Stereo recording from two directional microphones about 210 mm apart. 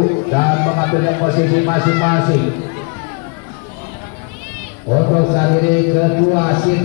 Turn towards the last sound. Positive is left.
turn(degrees=20)  # may be behind; listen again after turning